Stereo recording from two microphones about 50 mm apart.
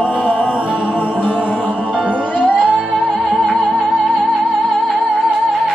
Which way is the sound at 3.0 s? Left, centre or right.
Centre.